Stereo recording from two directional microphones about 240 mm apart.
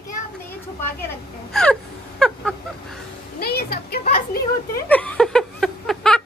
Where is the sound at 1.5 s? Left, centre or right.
Centre.